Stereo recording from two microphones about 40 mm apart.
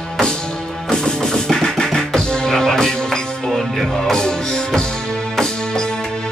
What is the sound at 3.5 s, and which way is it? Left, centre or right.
Music, centre.